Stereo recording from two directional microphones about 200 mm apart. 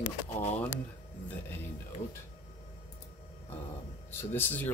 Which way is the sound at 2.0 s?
35° left (ahead or behind).